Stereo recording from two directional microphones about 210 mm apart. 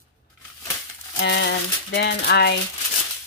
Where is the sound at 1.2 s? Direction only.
55° left (ahead or behind).